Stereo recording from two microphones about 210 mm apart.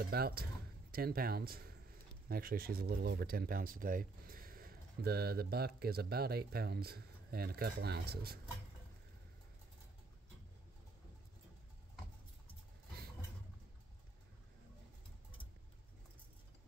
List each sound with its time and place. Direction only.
0.0 s speech: 45° right (ahead or behind)